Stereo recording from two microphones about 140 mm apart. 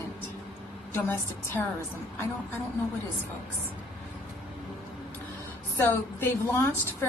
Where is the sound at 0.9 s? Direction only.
15° left (ahead or behind).